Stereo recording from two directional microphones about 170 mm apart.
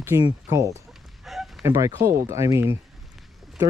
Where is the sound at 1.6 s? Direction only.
15° right (ahead or behind).